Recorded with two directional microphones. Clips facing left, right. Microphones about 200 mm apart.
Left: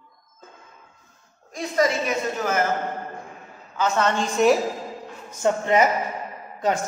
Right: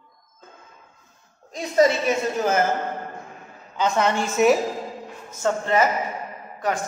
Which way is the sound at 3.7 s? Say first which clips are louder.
Right 1 dB; 15° right (ahead or behind).